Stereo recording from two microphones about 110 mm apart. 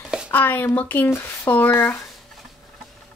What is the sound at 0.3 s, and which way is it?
Speech, 20° left (ahead or behind).